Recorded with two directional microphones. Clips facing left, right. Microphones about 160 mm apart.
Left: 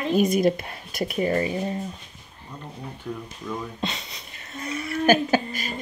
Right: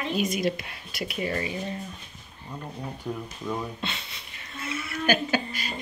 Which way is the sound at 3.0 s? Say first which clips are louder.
Even; 20° right (ahead or behind).